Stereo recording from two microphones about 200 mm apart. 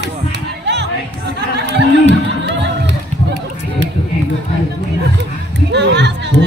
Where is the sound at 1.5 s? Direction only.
60° right (ahead or behind).